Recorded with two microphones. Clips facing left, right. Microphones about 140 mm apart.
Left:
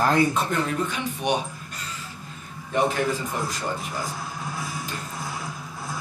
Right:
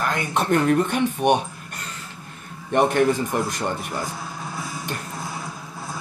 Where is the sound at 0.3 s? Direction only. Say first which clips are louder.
Right 6 dB; 60° right (ahead or behind).